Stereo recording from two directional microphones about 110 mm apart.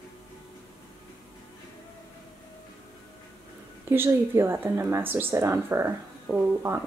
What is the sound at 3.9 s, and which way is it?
Speech, 20° right (ahead or behind).